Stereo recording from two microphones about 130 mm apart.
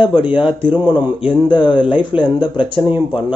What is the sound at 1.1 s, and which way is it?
Speech, 40° left (ahead or behind).